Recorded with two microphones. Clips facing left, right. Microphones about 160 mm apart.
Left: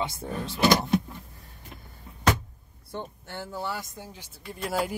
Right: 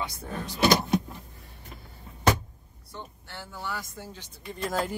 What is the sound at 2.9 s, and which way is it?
Speech, 45° left (ahead or behind).